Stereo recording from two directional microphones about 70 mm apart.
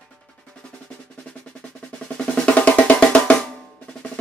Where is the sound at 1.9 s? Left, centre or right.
Centre.